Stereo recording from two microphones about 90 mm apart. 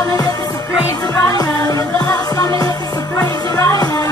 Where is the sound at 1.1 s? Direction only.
40° left (ahead or behind).